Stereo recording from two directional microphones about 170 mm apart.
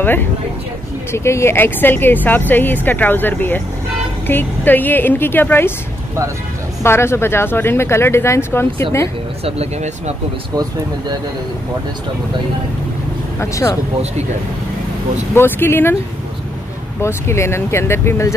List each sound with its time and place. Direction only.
0.0 s speech: 10° left (ahead or behind)
6.8 s speech: 15° left (ahead or behind)
9.4 s speech: 40° right (ahead or behind)
10.5 s speech: 20° right (ahead or behind)
13.4 s speech: 15° left (ahead or behind)
15.3 s speech: 15° left (ahead or behind)
17.0 s speech: 15° left (ahead or behind)